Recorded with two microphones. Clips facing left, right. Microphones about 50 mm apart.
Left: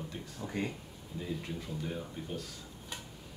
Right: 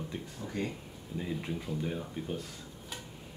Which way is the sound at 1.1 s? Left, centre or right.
Right.